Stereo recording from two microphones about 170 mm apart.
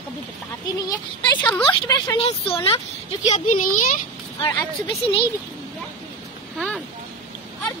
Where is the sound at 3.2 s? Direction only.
45° left (ahead or behind).